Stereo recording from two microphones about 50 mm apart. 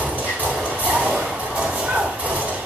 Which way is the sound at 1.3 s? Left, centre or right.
Right.